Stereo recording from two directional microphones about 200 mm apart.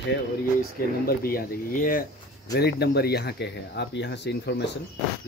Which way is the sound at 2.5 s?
55° left (ahead or behind).